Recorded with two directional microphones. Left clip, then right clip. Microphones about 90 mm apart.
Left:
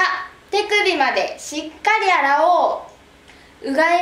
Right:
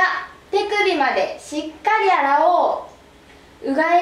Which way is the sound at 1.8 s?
25° left (ahead or behind).